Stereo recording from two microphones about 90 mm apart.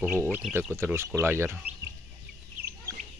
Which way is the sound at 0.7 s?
25° right (ahead or behind).